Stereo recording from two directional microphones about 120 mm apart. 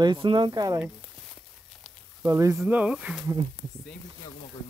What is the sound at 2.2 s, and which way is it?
Speech, 25° right (ahead or behind).